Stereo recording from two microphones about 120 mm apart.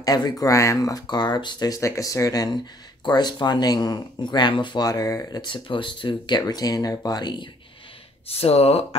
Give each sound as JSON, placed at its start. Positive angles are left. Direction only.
{"t": 0.0, "sound": "speech", "side_deg": 35}
{"t": 5.4, "sound": "speech", "side_deg": 45}
{"t": 8.3, "sound": "speech", "side_deg": 55}